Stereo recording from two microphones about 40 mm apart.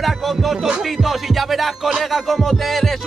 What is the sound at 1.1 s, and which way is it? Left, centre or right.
Music, centre.